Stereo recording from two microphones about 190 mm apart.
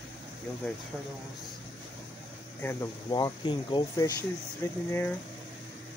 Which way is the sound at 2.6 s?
10° left (ahead or behind).